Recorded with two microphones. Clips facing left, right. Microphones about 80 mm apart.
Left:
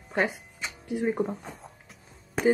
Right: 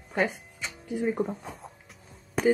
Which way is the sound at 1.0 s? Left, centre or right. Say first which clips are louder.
Left 1 dB; centre.